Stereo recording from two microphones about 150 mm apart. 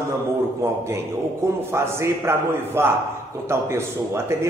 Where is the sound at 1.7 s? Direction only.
15° right (ahead or behind).